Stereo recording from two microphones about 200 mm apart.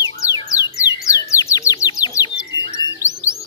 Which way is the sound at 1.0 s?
15° left (ahead or behind).